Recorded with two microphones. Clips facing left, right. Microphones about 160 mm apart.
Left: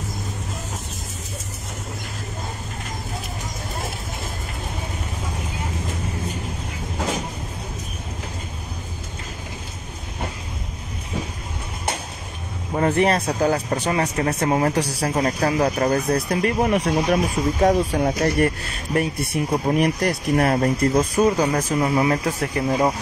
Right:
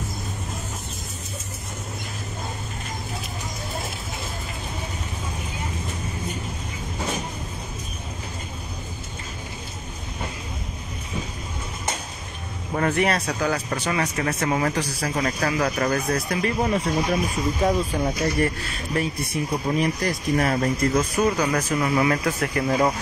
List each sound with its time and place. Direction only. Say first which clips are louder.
12.9 s speech: left 3 dB; 35° left (ahead or behind)
16.4 s speech: left 3 dB; 60° left (ahead or behind)
20.6 s speech: left 3 dB; 30° left (ahead or behind)